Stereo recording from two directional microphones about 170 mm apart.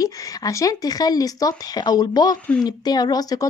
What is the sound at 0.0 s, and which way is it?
A woman's voice, 20° left (ahead or behind).